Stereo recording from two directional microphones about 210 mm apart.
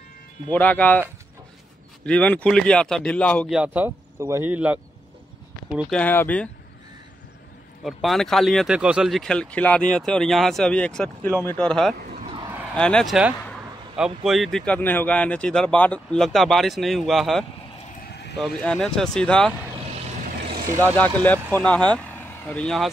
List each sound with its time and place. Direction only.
0.5 s speech: 10° left (ahead or behind)
2.0 s speech: 5° left (ahead or behind)
7.8 s speech: centre (ahead or behind)
12.0 s a sound: 40° right (ahead or behind)
12.3 s a sound: 20° right (ahead or behind)
12.7 s speech: 5° left (ahead or behind)
18.0 s clip-clop: 50° left (ahead or behind)
18.4 s speech: 5° left (ahead or behind)
20.9 s speech: 10° left (ahead or behind)